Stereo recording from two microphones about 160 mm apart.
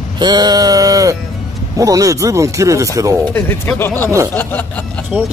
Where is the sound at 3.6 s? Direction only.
15° left (ahead or behind).